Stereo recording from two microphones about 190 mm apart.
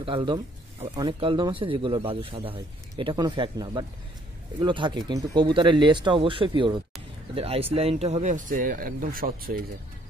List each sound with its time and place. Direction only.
0.0 s speech: 25° right (ahead or behind); by 9.7 s 50° right (ahead or behind)